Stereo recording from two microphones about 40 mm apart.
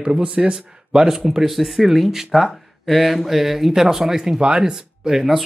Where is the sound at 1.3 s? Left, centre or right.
Centre.